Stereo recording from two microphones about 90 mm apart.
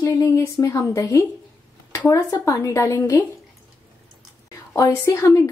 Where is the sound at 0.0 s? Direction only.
40° left (ahead or behind).